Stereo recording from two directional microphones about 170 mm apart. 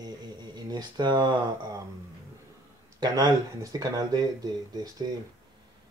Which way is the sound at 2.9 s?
25° right (ahead or behind).